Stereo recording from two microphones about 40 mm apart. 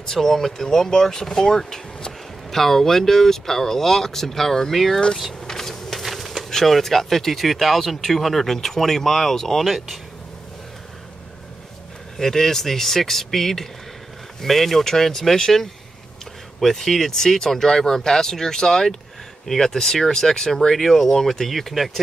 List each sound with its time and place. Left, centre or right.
0.1 s speech: centre
5.5 s a sound: centre
6.5 s speech: centre
12.2 s speech: centre